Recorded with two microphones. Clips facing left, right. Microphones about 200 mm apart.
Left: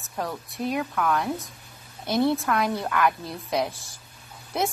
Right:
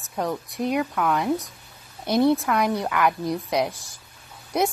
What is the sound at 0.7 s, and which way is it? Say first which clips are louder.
A woman's voice: right 2 dB; 5° right (ahead or behind).